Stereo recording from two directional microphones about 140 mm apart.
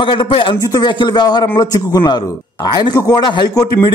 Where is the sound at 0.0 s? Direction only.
35° left (ahead or behind).